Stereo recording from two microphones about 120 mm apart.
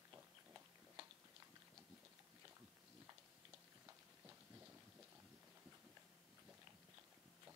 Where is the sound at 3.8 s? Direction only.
15° right (ahead or behind).